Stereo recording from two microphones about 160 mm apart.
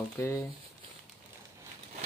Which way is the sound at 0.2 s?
20° left (ahead or behind).